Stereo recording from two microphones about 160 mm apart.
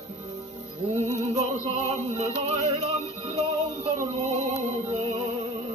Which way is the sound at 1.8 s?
45° right (ahead or behind).